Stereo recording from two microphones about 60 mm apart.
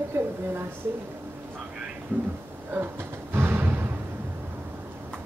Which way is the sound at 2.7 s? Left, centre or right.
Right.